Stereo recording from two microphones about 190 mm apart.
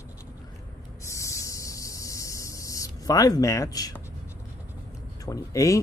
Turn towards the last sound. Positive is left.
turn(degrees=15)  # may be behind; listen again after turning